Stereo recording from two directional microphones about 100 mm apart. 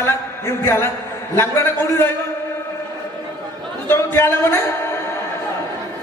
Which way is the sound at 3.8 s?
25° left (ahead or behind).